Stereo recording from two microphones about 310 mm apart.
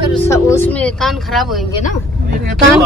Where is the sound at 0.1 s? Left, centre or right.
Centre.